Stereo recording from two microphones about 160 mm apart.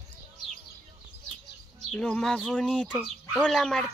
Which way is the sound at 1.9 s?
5° left (ahead or behind).